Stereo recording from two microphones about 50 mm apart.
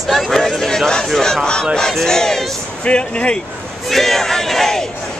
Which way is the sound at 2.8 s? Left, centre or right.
Left.